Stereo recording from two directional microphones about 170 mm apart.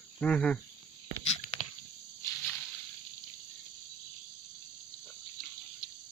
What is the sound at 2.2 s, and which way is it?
Snake, 15° left (ahead or behind).